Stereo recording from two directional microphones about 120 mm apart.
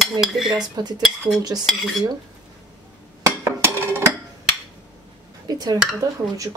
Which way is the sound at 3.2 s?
20° right (ahead or behind).